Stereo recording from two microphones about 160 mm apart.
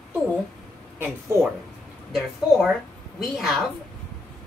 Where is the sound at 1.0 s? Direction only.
15° right (ahead or behind).